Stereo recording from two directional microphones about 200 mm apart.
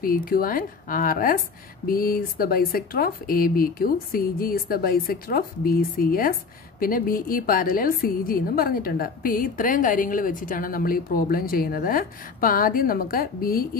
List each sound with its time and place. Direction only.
0.0 s a woman's voice: 45° left (ahead or behind)